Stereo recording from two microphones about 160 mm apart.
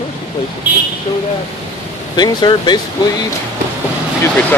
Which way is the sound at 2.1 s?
25° left (ahead or behind).